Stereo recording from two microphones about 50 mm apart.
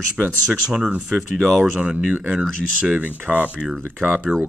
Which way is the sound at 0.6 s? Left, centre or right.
Centre.